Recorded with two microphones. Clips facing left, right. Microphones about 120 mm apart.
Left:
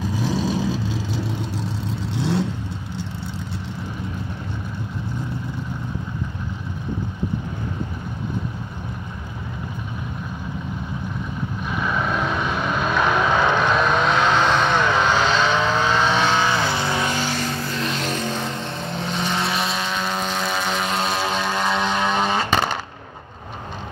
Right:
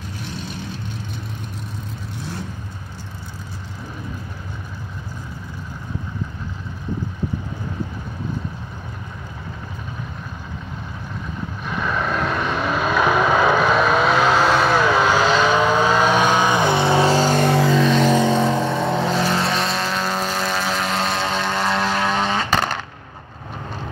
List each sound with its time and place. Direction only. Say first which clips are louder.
0.3 s vehicle: left 9 dB; 90° left
11.6 s vehicle: right 1 dB; centre (ahead or behind); by 17.5 s 45° right (ahead or behind)
18.2 s vehicle: right 9 dB; 70° right (ahead or behind)
19.1 s vehicle: right 3 dB; centre (ahead or behind)
22.4 s a sound: even; 5° left (ahead or behind)